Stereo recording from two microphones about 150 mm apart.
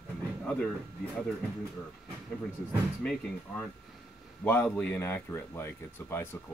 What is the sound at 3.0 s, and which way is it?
Speech, 5° left (ahead or behind).